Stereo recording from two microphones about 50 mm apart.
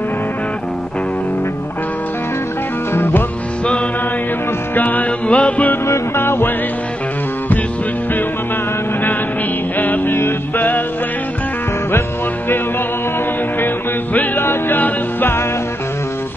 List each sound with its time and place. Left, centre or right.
2.9 s music: left
4.7 s music: left
5.9 s music: left
9.8 s music: left
14.1 s music: left